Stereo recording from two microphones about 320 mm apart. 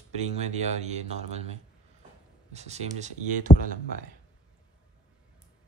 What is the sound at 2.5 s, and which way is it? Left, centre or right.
Speech, centre.